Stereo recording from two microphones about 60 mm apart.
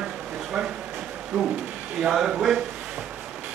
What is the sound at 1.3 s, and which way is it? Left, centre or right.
Speech, right.